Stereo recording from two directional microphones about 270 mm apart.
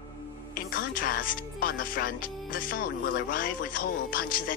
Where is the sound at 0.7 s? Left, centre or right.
Left.